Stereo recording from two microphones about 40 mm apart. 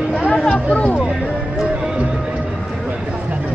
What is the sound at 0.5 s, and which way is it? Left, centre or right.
Music, left.